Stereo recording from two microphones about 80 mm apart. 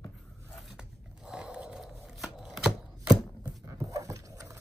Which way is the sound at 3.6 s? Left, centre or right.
Right.